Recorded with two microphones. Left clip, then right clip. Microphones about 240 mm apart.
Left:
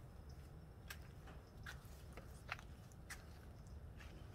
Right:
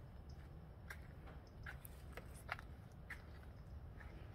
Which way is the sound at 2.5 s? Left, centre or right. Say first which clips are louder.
Right 1 dB; centre.